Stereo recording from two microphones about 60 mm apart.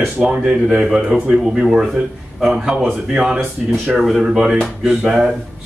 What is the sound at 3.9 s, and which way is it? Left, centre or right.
Speech, centre.